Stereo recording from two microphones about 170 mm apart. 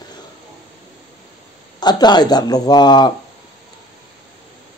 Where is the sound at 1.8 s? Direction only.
25° left (ahead or behind).